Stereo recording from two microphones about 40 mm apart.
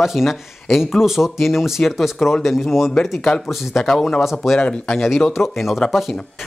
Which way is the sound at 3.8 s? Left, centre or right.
Centre.